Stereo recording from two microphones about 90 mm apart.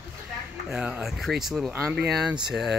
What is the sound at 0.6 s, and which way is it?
Fowl, 15° right (ahead or behind).